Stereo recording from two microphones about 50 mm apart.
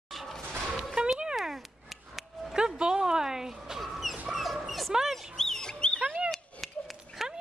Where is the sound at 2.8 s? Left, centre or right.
Centre.